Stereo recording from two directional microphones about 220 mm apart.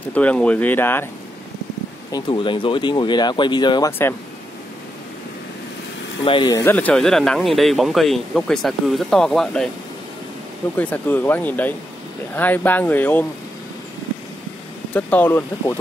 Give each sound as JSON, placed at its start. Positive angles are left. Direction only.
{"t": 0.1, "sound": "speech", "side_deg": 5}
{"t": 2.1, "sound": "speech", "side_deg": 20}
{"t": 6.2, "sound": "speech", "side_deg": 20}
{"t": 10.8, "sound": "speech", "side_deg": 5}
{"t": 15.0, "sound": "speech", "side_deg": 10}